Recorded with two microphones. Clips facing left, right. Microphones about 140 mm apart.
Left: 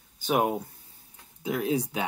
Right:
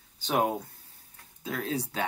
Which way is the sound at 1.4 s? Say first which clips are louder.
Left 5 dB; 15° left (ahead or behind).